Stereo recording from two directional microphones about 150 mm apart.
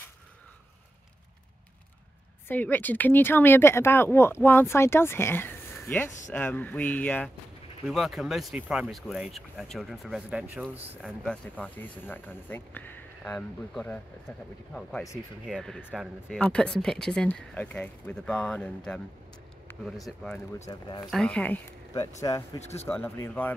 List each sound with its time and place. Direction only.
2.4 s speech: 10° left (ahead or behind)
7.8 s speech: centre (ahead or behind)
11.0 s speech: 5° left (ahead or behind)
20.5 s speech: 20° left (ahead or behind)
21.1 s speech: 5° left (ahead or behind)
22.2 s speech: 25° left (ahead or behind)
22.6 s speech: 45° left (ahead or behind)
22.8 s speech: 15° left (ahead or behind)